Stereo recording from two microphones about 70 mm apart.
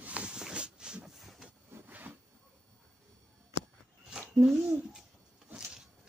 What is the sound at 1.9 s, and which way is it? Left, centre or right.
Zipper, right.